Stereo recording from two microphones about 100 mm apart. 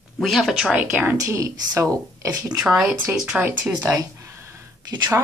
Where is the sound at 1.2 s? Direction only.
30° right (ahead or behind).